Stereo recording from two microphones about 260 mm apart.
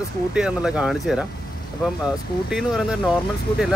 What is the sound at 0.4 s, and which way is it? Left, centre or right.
Speech, centre.